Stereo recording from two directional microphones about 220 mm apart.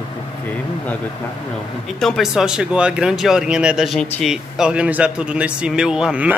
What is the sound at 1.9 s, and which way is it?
Speech, centre (ahead or behind).